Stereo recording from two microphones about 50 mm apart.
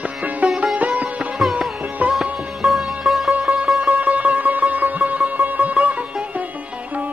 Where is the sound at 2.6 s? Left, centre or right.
Centre.